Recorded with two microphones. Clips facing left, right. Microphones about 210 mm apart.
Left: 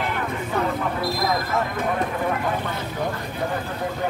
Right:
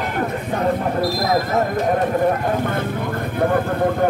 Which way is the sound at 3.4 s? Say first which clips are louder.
Right 9 dB; 55° right (ahead or behind).